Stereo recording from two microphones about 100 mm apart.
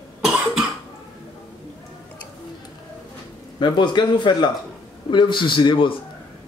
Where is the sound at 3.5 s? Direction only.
50° left (ahead or behind).